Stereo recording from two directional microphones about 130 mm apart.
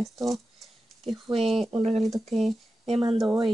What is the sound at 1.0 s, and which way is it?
Speech, 45° right (ahead or behind).